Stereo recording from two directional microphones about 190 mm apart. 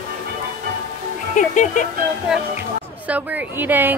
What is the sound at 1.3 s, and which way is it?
Speech, 40° left (ahead or behind).